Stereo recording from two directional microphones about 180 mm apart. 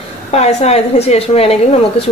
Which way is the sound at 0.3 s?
35° left (ahead or behind).